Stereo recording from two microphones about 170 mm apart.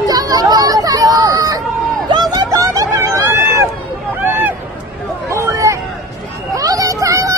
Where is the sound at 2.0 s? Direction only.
25° right (ahead or behind).